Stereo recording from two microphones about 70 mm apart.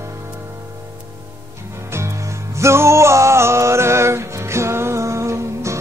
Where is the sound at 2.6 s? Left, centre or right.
Right.